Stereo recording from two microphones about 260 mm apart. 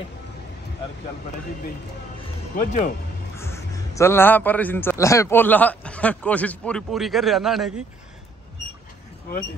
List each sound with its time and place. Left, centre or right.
2.5 s speech: left
3.3 s a man's voice: centre